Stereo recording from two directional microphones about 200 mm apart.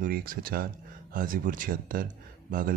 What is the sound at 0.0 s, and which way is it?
Speech, 45° right (ahead or behind).